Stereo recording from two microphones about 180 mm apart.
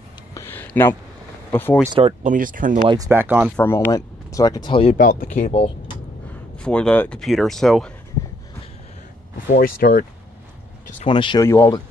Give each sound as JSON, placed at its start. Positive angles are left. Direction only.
{"t": 0.3, "sound": "a sound", "side_deg": 15}
{"t": 1.5, "sound": "speech", "side_deg": 10}
{"t": 2.2, "sound": "speech", "side_deg": -50}
{"t": 2.9, "sound": "speech", "side_deg": -15}
{"t": 3.5, "sound": "speech", "side_deg": 15}
{"t": 4.9, "sound": "speech", "side_deg": 50}
{"t": 5.5, "sound": "speech", "side_deg": 35}
{"t": 6.6, "sound": "speech", "side_deg": 5}
{"t": 9.5, "sound": "speech", "side_deg": 55}
{"t": 11.1, "sound": "speech", "side_deg": 25}